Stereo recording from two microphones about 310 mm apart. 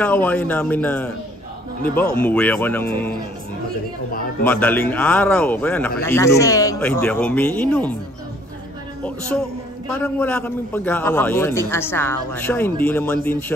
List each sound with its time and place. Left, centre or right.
0.0 s speech: centre
4.1 s a man's voice: left
4.5 s speech: centre
9.0 s a man's voice: centre